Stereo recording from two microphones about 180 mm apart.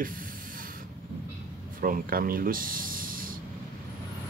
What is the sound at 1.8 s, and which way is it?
Speech, 50° right (ahead or behind).